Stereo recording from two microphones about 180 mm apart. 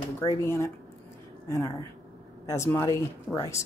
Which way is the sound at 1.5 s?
20° left (ahead or behind).